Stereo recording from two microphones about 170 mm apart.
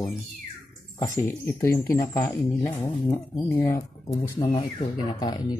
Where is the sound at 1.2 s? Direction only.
15° left (ahead or behind).